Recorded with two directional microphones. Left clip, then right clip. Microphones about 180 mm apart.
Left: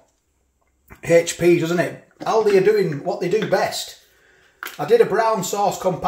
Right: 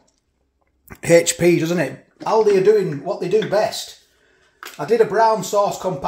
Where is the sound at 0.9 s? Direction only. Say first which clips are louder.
Right 2 dB; 60° right (ahead or behind); by 1.8 s 45° right (ahead or behind).